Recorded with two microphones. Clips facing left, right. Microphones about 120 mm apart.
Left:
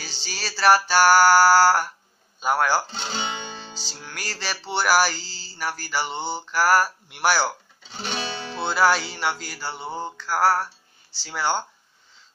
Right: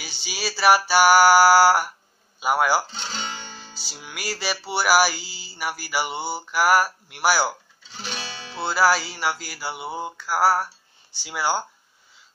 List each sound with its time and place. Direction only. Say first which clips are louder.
0.0 s music: right 3 dB; 10° right (ahead or behind)
2.9 s speech: left 3 dB; 55° left (ahead or behind)
3.7 s music: left 1 dB; 10° right (ahead or behind)
8.0 s music: left 5 dB; 55° left (ahead or behind)
8.6 s music: even; 5° right (ahead or behind)